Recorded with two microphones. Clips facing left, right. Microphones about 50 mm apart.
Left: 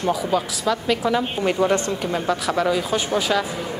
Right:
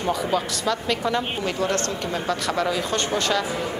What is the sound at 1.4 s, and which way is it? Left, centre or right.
Speech, centre.